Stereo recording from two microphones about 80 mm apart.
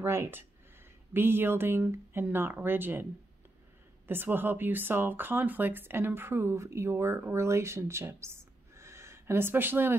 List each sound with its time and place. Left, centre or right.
0.0 s speech: right
4.1 s speech: right